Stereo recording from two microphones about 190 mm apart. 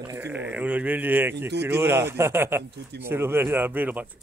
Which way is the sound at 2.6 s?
60° right (ahead or behind).